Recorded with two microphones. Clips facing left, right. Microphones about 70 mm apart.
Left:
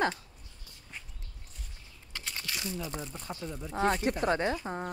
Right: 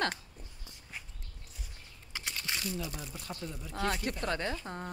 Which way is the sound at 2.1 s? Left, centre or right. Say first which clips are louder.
Right 1 dB; centre.